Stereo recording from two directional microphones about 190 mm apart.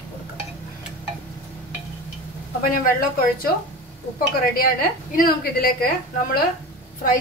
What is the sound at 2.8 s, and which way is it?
Speech, 50° left (ahead or behind).